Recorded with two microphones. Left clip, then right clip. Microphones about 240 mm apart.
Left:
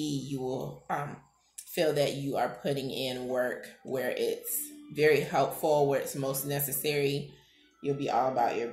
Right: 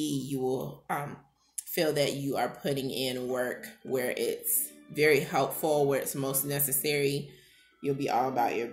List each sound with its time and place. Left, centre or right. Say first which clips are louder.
0.0 s speech: right 3 dB; right